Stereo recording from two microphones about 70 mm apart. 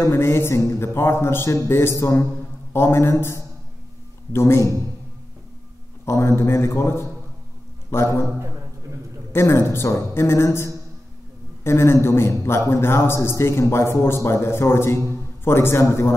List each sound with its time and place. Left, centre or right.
0.1 s a man's voice: left
2.0 s a man's voice: left
2.7 s a man's voice: left
6.0 s a man's voice: left
9.3 s a man's voice: left